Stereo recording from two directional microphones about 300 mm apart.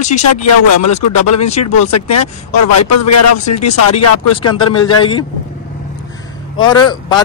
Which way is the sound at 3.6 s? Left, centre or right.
Left.